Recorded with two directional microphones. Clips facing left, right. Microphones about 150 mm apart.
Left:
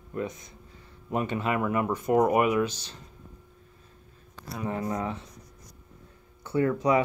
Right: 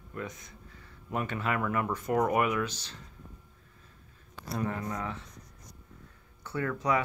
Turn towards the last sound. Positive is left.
turn(degrees=20)  # may be behind; listen again after turning